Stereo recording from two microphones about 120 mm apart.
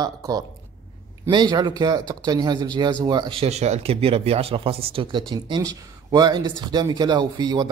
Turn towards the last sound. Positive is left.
turn(degrees=-40)  # may be behind; listen again after turning